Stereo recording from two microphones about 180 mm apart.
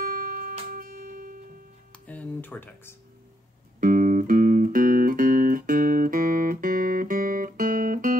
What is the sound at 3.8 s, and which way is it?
Music, 50° right (ahead or behind).